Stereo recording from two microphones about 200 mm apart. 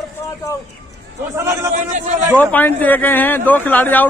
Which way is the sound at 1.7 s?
40° right (ahead or behind).